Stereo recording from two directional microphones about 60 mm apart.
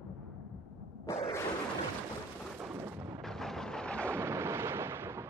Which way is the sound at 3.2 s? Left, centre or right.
Centre.